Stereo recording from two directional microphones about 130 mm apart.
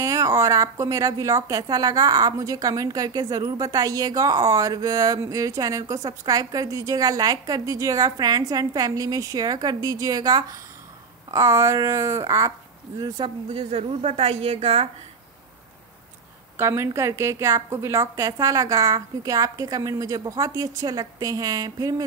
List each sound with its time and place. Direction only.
0.0 s a woman's voice: 25° right (ahead or behind)
13.5 s a woman's voice: 50° right (ahead or behind)
16.5 s a woman's voice: 20° right (ahead or behind)